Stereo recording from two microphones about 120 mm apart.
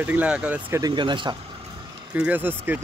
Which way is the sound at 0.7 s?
30° right (ahead or behind).